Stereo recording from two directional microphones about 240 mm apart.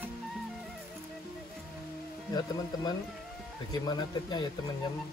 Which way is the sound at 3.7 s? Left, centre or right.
Centre.